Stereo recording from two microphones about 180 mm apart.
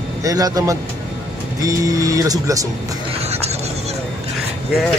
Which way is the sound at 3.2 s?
35° right (ahead or behind).